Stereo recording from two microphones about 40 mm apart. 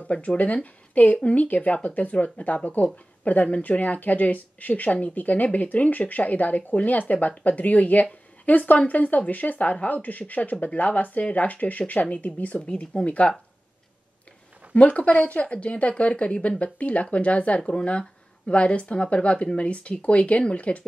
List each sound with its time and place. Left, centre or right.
0.0 s speech: left
14.8 s speech: left